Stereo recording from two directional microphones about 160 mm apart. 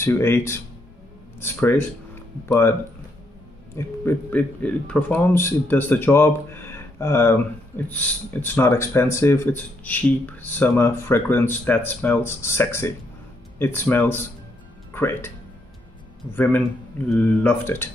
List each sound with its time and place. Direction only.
0.0 s speech: 15° left (ahead or behind)
3.7 s speech: 15° left (ahead or behind)
16.2 s speech: 30° left (ahead or behind)
17.1 s speech: 10° left (ahead or behind)